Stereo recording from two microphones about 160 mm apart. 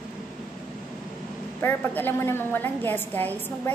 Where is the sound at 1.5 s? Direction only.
10° left (ahead or behind).